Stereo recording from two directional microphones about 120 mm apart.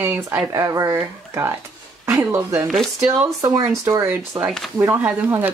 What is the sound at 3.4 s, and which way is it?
Speech, 25° right (ahead or behind).